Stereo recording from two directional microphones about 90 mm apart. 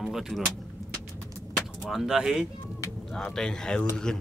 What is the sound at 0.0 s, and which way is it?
Speech, centre (ahead or behind).